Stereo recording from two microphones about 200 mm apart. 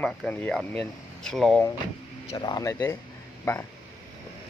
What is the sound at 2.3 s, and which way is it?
Speech, 20° left (ahead or behind).